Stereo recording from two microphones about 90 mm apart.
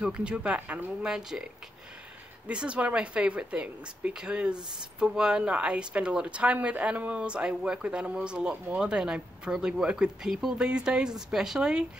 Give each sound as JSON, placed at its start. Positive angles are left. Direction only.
{"t": 0.0, "sound": "speech", "side_deg": -10}
{"t": 2.4, "sound": "speech", "side_deg": -10}